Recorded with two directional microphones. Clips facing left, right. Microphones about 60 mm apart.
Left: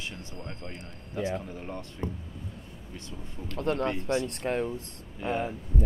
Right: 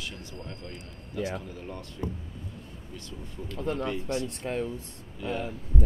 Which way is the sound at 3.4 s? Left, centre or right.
Left.